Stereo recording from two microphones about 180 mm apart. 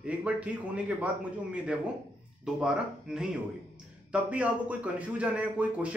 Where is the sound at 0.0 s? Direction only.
5° right (ahead or behind).